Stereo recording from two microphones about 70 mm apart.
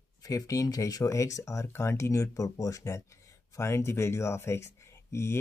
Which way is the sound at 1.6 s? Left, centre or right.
Left.